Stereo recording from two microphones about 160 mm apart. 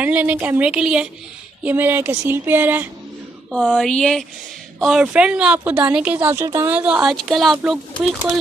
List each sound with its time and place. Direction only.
0.0 s a woman's voice: 10° right (ahead or behind)
3.5 s a woman's voice: centre (ahead or behind)